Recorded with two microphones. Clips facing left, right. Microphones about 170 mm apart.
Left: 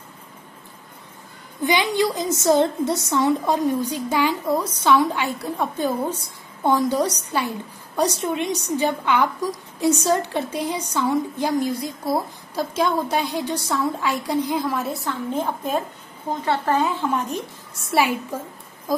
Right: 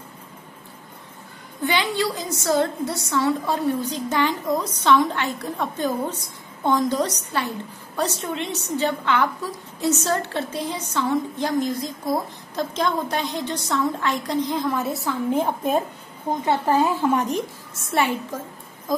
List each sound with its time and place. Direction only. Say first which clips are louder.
1.6 s a woman's voice: left 3 dB; 15° left (ahead or behind); by 15.1 s centre (ahead or behind)
15.2 s a woman's voice: right 4 dB; 15° right (ahead or behind)
17.7 s a woman's voice: left 2 dB; 5° left (ahead or behind)